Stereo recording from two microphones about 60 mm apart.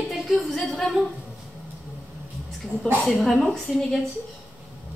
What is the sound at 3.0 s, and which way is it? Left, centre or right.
Speech, centre.